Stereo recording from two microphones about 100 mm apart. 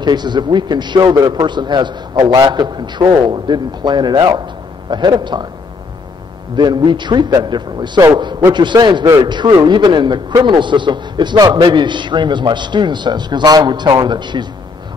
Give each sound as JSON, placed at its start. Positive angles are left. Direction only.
{"t": 0.0, "sound": "a man's voice", "side_deg": -45}
{"t": 6.5, "sound": "a man's voice", "side_deg": -50}
{"t": 8.2, "sound": "a sound", "side_deg": -50}
{"t": 8.5, "sound": "a man's voice", "side_deg": -50}